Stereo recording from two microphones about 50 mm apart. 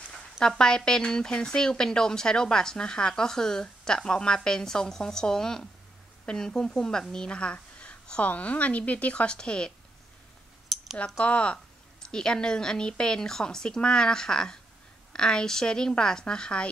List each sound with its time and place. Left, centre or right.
0.1 s a woman's voice: centre
10.7 s a sound: centre
11.1 s speech: left